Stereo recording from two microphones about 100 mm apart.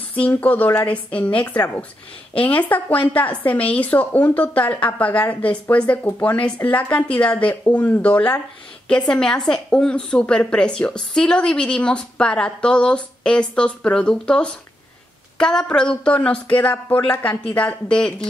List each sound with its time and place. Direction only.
0.1 s a woman's voice: 15° left (ahead or behind)